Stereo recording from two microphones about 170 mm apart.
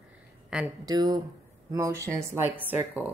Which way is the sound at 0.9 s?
25° right (ahead or behind).